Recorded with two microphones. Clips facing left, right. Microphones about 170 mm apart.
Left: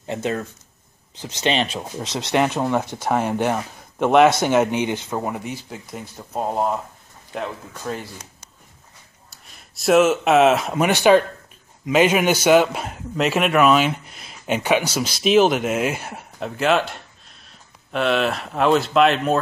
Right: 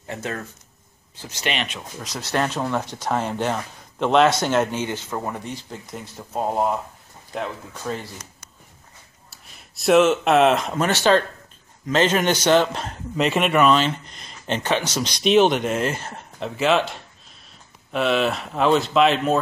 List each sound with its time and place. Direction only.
0.0 s speech: 20° left (ahead or behind); by 8.1 s centre (ahead or behind)
9.3 s speech: centre (ahead or behind)